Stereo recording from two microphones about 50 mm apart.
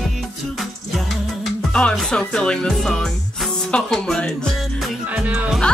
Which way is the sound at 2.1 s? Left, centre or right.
Centre.